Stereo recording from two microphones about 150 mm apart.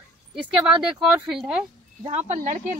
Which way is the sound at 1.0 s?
5° right (ahead or behind).